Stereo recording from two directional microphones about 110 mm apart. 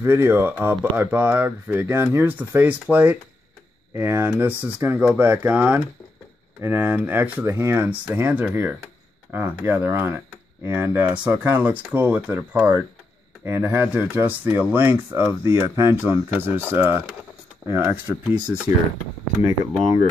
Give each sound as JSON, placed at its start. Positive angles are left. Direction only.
{"t": 0.0, "sound": "speech", "side_deg": -20}